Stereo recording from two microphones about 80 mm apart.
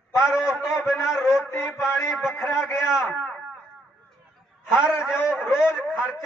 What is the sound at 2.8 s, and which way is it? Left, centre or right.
Speech, centre.